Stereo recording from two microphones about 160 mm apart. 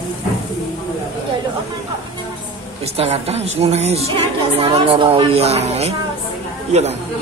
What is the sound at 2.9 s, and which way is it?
Speech, 40° right (ahead or behind).